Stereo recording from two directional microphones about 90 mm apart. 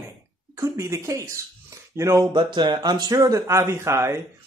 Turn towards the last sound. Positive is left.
turn(degrees=-30)  # may be behind; listen again after turning